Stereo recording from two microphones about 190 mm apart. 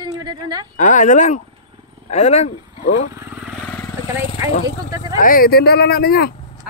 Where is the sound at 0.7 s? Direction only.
40° left (ahead or behind).